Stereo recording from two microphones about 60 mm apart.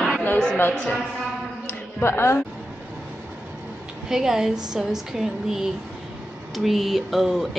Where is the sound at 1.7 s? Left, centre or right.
Left.